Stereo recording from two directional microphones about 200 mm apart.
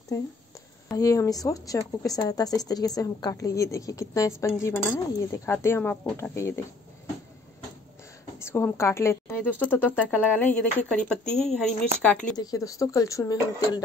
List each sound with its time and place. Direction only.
0.9 s speech: 15° left (ahead or behind)
8.4 s speech: 10° left (ahead or behind)
12.4 s speech: 15° left (ahead or behind)